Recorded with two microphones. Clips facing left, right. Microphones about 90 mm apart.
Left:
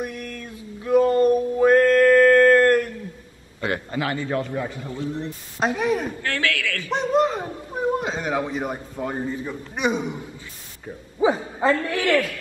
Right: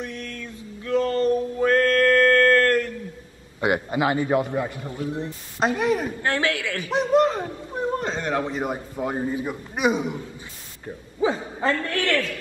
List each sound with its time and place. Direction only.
0.0 s a sound: 15° left (ahead or behind)
0.8 s male singing: 15° left (ahead or behind)
3.6 s a man's voice: 20° right (ahead or behind)
5.6 s speech: centre (ahead or behind)
6.2 s a sound: 20° right (ahead or behind)
7.2 s a man's voice: centre (ahead or behind); by 9.6 s 15° right (ahead or behind)
9.8 s speech: centre (ahead or behind)
11.1 s a man's voice: 20° left (ahead or behind)